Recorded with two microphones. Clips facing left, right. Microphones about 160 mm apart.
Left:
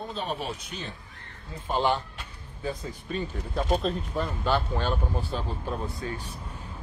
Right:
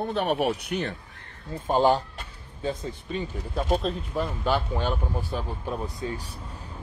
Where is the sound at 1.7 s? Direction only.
40° right (ahead or behind).